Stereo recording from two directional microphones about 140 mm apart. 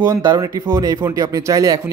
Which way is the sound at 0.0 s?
20° right (ahead or behind).